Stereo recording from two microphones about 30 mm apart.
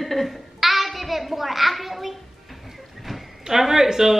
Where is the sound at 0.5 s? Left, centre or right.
Centre.